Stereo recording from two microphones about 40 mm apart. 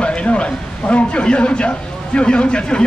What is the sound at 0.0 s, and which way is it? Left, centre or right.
Speech, left.